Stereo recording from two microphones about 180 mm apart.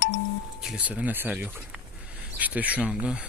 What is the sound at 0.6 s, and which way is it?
Speech, 5° right (ahead or behind).